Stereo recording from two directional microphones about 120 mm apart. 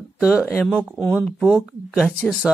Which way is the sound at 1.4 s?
10° right (ahead or behind).